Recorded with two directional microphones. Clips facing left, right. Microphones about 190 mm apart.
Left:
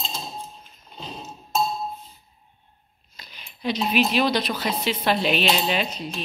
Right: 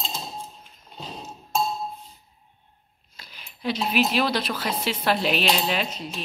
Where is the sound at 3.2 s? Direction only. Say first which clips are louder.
Left 1 dB; 5° right (ahead or behind).